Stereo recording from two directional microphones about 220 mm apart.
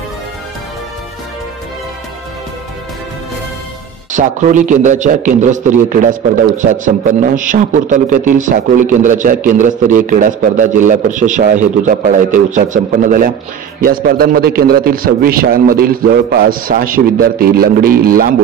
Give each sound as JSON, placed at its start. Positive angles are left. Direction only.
{"t": 4.1, "sound": "a man's voice", "side_deg": -35}